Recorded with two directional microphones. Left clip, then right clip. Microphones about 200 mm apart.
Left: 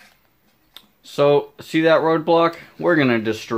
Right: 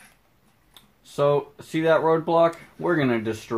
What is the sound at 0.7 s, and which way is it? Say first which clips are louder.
Speech: left 8 dB; 40° left (ahead or behind).